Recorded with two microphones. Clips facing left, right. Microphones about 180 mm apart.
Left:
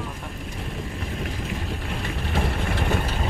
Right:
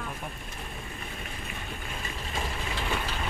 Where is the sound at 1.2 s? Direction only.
80° left; by 3.0 s 55° left (ahead or behind).